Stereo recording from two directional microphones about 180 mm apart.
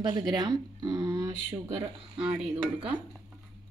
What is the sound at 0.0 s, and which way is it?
Speech, 25° right (ahead or behind).